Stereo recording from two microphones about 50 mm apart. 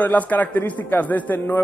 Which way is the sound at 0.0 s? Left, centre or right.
Left.